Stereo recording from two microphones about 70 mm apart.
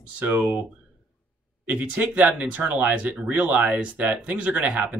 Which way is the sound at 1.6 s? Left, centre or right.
Right.